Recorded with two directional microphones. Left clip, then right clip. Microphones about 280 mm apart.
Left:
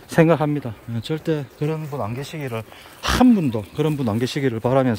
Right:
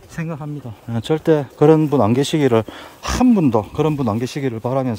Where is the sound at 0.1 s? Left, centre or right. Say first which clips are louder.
Left 14 dB; left.